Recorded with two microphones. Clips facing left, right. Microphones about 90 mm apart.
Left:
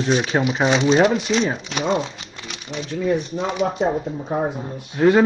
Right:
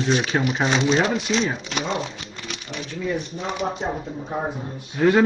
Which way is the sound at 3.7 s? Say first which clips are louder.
Left 6 dB; 40° left (ahead or behind).